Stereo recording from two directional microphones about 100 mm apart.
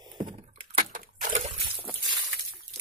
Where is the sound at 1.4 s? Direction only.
70° right (ahead or behind).